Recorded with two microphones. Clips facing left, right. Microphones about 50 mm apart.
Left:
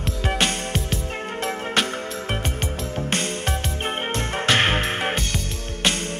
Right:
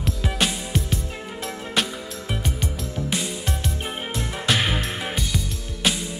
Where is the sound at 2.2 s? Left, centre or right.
Left.